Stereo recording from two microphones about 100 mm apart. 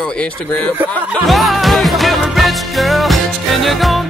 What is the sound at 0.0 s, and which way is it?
Speech, 15° left (ahead or behind).